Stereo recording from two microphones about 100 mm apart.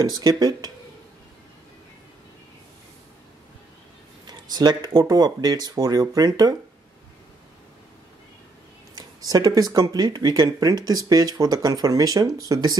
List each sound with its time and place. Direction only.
0.0 s speech: 45° right (ahead or behind)
4.3 s speech: 45° right (ahead or behind)
8.9 s speech: 40° right (ahead or behind)